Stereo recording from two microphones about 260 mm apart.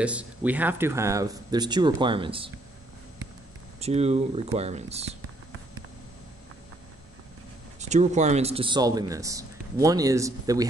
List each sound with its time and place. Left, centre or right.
0.0 s speech: centre
3.8 s speech: right
7.8 s speech: right